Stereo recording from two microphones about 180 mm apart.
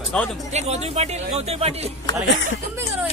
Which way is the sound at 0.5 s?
40° right (ahead or behind).